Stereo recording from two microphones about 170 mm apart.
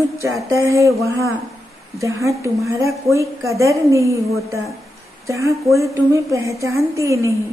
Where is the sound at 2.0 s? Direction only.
20° right (ahead or behind).